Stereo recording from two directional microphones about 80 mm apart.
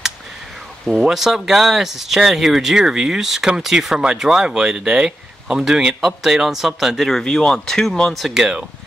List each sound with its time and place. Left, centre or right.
0.8 s speech: centre